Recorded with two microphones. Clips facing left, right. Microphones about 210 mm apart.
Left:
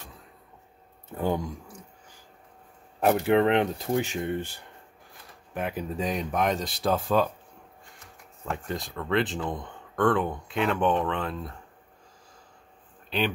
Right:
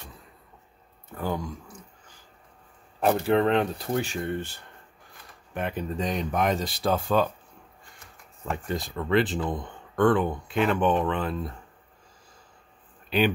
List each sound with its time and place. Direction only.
1.1 s speech: 20° left (ahead or behind)
3.0 s speech: 15° left (ahead or behind); by 7.2 s centre (ahead or behind)
8.5 s speech: centre (ahead or behind)